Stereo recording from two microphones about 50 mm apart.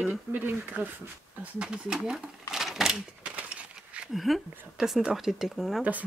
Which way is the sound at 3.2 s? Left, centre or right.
Right.